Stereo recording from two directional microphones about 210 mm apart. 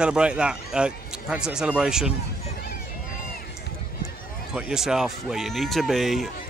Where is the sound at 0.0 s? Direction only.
5° right (ahead or behind).